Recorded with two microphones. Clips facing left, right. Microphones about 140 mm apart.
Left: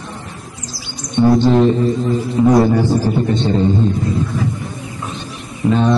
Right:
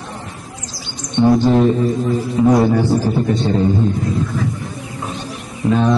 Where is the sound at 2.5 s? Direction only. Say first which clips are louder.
Left 1 dB; 10° left (ahead or behind).